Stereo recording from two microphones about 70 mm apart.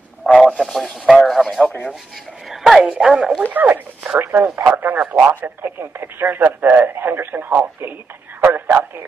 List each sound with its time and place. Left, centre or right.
0.2 s radio: centre
0.6 s a man's voice: centre
1.6 s speech: centre
3.5 s speech: right